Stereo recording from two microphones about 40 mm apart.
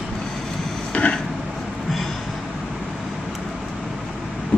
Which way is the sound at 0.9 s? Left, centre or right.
Left.